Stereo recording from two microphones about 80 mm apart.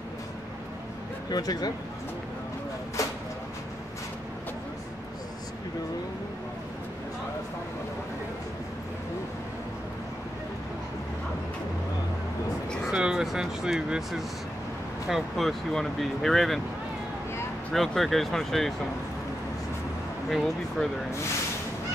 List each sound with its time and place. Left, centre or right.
1.3 s speech: left
3.0 s vehicle: left
12.9 s speech: centre
17.7 s speech: centre
20.2 s speech: centre